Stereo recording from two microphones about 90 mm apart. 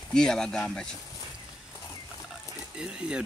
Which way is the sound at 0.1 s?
5° left (ahead or behind).